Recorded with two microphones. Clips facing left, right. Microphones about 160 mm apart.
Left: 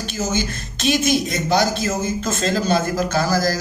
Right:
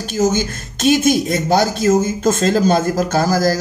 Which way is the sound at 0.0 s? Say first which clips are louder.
Right 6 dB; 45° right (ahead or behind).